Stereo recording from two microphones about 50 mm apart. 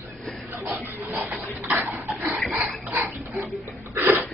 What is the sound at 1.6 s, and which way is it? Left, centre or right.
Dog, right.